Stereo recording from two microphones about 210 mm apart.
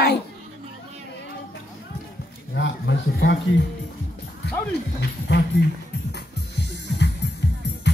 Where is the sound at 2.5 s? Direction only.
60° left (ahead or behind).